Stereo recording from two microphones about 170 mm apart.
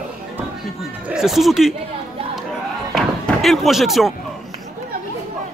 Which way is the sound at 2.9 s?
Centre (ahead or behind).